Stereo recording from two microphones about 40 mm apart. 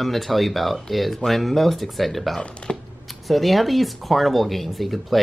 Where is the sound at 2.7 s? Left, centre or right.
Centre.